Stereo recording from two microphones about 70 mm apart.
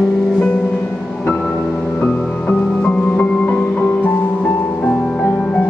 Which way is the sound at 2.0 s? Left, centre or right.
Left.